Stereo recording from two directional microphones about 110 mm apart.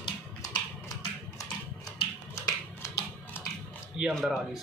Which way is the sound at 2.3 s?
25° left (ahead or behind).